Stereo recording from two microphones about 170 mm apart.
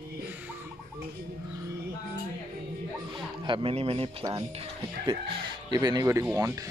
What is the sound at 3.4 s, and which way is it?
Speech, 30° right (ahead or behind).